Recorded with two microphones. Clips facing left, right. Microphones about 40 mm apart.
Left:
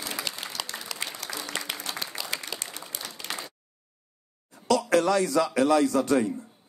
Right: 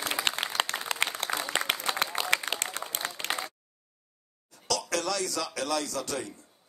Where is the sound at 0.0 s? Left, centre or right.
Right.